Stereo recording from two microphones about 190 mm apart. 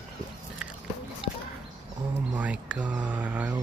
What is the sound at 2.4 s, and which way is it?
Speech, 5° right (ahead or behind).